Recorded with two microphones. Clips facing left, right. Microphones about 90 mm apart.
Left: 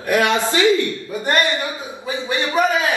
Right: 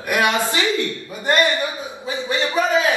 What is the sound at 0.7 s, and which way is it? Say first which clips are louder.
A man's voice: left 5 dB; 20° left (ahead or behind).